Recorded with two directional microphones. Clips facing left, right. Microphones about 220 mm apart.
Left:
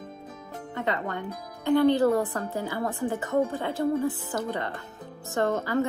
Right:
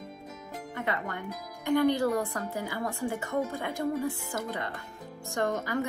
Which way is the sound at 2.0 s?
20° left (ahead or behind).